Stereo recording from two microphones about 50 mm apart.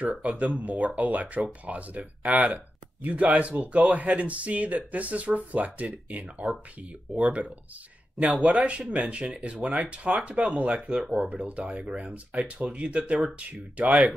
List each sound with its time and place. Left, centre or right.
0.2 s speech: right